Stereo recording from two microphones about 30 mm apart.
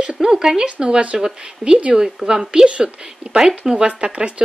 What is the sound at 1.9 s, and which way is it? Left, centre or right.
Speech, centre.